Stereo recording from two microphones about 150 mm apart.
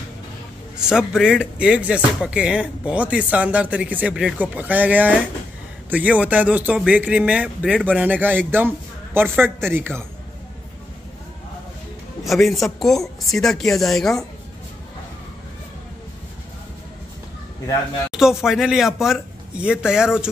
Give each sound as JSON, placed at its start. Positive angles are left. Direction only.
{"t": 0.7, "sound": "a man's voice", "side_deg": -5}
{"t": 12.3, "sound": "speech", "side_deg": 0}
{"t": 18.1, "sound": "speech", "side_deg": -5}